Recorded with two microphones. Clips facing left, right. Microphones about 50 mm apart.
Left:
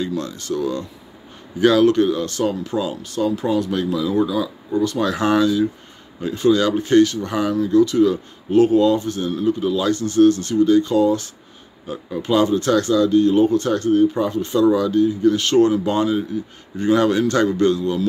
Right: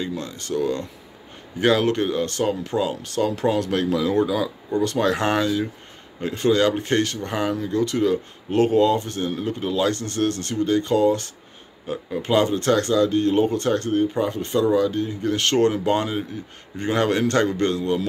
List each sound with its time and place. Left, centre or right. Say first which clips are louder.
0.0 s speech: left 4 dB; right